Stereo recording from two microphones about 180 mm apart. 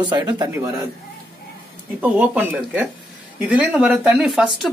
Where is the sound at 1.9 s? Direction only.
10° right (ahead or behind).